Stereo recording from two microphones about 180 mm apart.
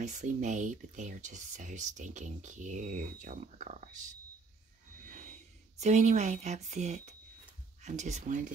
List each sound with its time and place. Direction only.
0.0 s speech: 40° right (ahead or behind)